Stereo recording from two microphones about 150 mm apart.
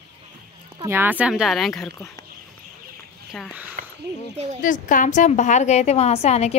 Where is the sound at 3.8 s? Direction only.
65° right (ahead or behind).